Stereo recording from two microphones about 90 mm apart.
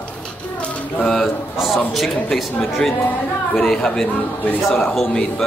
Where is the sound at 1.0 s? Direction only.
5° left (ahead or behind).